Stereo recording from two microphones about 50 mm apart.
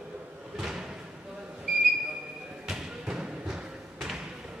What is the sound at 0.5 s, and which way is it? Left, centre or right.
Thump, centre.